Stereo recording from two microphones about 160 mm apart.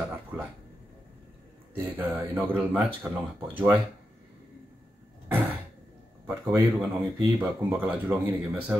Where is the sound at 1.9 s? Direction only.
10° right (ahead or behind).